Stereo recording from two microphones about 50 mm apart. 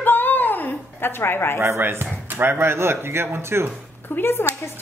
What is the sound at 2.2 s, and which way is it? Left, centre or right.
Speech, right.